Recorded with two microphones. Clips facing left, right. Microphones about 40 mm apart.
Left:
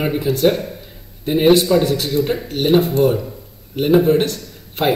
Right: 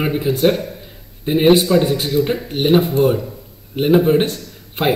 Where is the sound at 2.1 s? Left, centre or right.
Centre.